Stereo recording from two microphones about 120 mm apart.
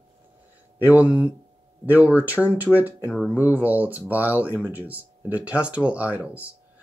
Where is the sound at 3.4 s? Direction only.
15° right (ahead or behind).